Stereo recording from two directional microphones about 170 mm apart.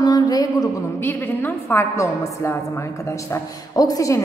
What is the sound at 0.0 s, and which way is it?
Music, 25° left (ahead or behind).